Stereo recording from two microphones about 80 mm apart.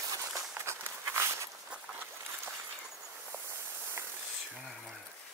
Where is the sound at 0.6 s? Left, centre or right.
Right.